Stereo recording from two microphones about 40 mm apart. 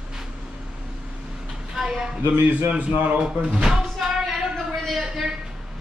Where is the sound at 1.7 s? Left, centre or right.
Centre.